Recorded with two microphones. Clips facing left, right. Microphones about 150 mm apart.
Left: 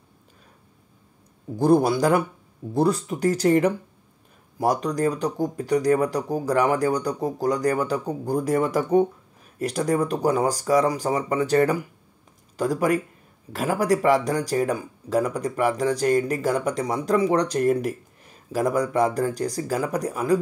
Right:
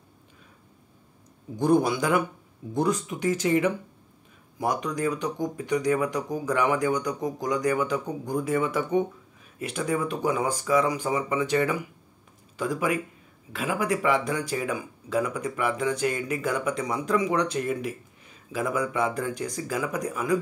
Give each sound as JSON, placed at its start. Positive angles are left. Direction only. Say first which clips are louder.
{"t": 1.6, "sound": "speech", "louder": "left 4 dB", "side_deg": 35}